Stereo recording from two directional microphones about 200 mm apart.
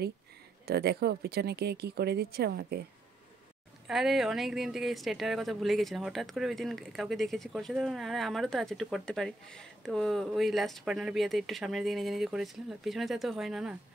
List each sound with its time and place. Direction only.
0.7 s speech: 55° right (ahead or behind)
3.8 s speech: centre (ahead or behind)